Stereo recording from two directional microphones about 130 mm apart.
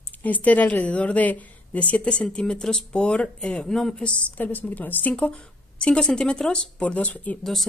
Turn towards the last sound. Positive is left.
turn(degrees=5)  # may be behind; listen again after turning